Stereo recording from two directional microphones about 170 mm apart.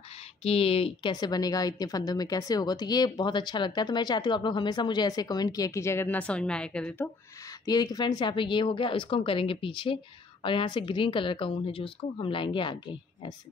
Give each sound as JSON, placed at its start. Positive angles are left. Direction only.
{"t": 0.4, "sound": "a woman's voice", "side_deg": 35}
{"t": 7.6, "sound": "a woman's voice", "side_deg": 25}